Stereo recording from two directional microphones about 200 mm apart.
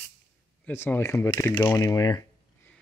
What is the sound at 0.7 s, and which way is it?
Speech, 10° left (ahead or behind).